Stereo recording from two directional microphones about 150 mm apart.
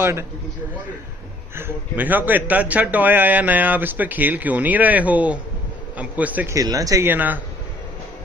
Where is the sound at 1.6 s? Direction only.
15° right (ahead or behind).